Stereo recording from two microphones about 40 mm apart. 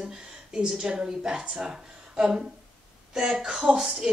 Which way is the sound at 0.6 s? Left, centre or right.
Centre.